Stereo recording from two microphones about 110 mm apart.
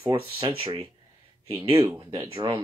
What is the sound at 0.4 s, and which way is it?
Speech, 60° right (ahead or behind).